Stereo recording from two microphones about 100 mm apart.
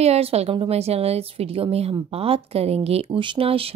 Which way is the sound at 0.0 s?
90° right.